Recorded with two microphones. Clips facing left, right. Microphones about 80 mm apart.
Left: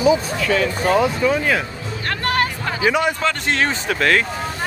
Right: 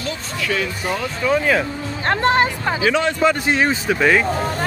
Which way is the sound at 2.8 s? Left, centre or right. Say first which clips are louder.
Left 1 dB; centre.